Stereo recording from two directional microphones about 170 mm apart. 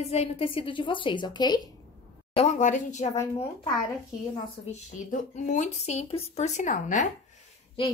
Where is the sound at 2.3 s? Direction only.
45° left (ahead or behind).